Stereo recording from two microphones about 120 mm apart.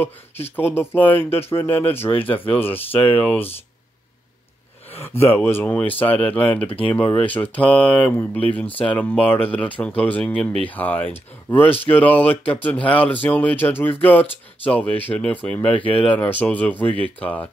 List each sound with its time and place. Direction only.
0.6 s speech: 15° left (ahead or behind)
5.0 s speech: 20° left (ahead or behind)